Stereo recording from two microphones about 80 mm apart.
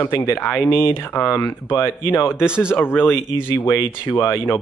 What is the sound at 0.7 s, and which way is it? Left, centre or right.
Speech, left.